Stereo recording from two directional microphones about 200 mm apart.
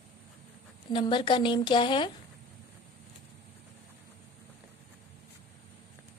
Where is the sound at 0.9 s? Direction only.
25° left (ahead or behind).